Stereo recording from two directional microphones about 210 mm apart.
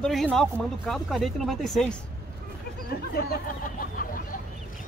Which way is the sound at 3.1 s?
45° left (ahead or behind).